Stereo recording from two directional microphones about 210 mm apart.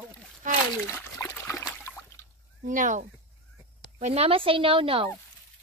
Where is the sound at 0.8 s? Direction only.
10° left (ahead or behind).